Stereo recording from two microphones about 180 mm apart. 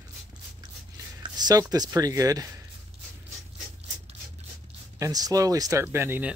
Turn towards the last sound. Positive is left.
turn(degrees=-10)  # may be behind; listen again after turning